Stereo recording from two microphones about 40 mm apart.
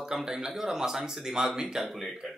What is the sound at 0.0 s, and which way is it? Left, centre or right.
Speech, centre.